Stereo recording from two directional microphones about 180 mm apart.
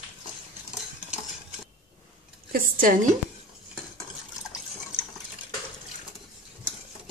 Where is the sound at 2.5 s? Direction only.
50° right (ahead or behind).